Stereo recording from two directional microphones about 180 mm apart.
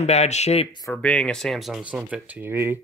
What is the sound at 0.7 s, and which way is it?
Speech, 15° left (ahead or behind).